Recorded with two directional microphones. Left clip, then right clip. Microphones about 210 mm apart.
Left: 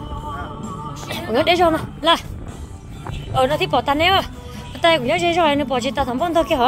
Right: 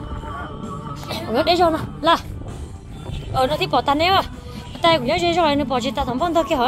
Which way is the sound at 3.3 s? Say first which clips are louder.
Left 1 dB; 10° left (ahead or behind).